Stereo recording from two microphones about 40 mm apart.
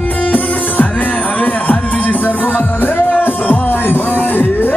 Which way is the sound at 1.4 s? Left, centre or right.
Left.